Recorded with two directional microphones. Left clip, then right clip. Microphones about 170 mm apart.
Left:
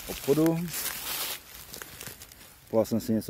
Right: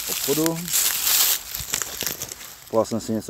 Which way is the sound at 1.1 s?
70° right (ahead or behind).